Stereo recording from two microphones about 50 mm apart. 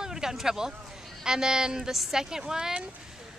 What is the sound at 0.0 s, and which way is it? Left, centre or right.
Speech, centre.